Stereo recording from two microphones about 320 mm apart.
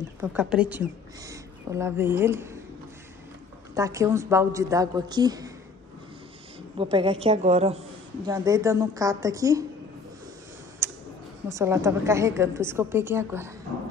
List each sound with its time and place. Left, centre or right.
0.2 s speech: centre
3.7 s a woman's voice: centre
6.8 s a woman's voice: centre
11.4 s a woman's voice: centre